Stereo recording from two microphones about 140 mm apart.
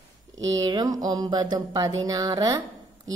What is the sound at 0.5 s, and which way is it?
Speech, 25° right (ahead or behind).